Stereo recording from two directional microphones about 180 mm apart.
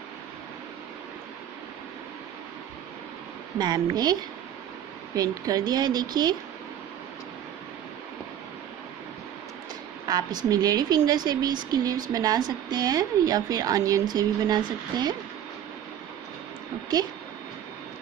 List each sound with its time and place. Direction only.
3.5 s a woman's voice: 25° right (ahead or behind)
10.0 s a woman's voice: 20° right (ahead or behind)